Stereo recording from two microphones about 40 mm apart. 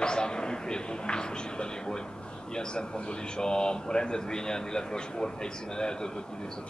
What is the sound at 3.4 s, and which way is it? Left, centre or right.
Speech, centre.